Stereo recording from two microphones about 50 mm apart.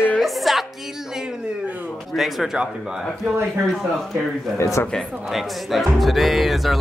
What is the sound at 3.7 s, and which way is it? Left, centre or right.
Speech, centre.